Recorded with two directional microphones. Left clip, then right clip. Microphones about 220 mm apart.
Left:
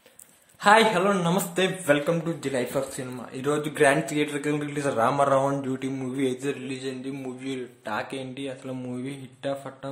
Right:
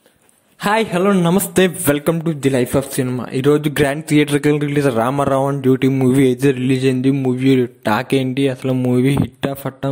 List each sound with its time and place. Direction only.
0.7 s a man's voice: 40° right (ahead or behind)